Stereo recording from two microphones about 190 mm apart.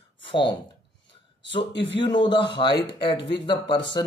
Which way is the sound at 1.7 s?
70° left (ahead or behind).